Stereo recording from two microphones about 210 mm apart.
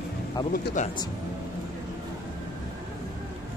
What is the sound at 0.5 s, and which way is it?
Speech, 40° left (ahead or behind).